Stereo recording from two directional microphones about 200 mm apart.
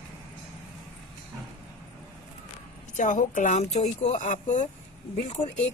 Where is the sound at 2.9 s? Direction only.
40° left (ahead or behind).